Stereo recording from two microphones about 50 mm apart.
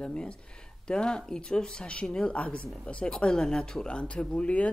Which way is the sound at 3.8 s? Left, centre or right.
Left.